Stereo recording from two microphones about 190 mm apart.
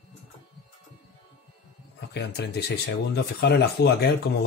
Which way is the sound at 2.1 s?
60° left (ahead or behind).